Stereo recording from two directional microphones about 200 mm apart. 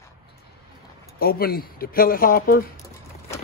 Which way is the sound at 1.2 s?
50° left (ahead or behind).